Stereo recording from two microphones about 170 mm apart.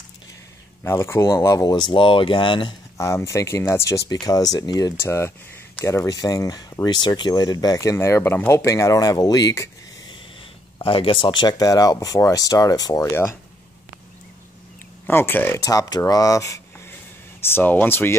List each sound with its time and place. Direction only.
0.8 s speech: 15° left (ahead or behind); by 2.7 s 30° left (ahead or behind)
3.0 s speech: 15° left (ahead or behind)
15.0 s speech: 10° left (ahead or behind)